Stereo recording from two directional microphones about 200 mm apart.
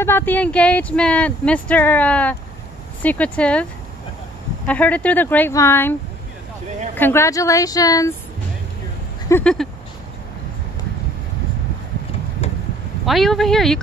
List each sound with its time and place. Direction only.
0.0 s speech: 10° left (ahead or behind)
4.6 s speech: 5° left (ahead or behind)
7.0 s speech: 10° left (ahead or behind)
9.3 s speech: 5° left (ahead or behind)
12.4 s a sound: 35° left (ahead or behind)
13.0 s speech: centre (ahead or behind)